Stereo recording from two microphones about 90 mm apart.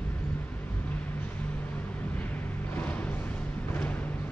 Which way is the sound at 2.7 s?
15° left (ahead or behind).